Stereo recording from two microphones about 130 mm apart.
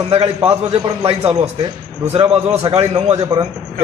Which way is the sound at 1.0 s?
50° right (ahead or behind).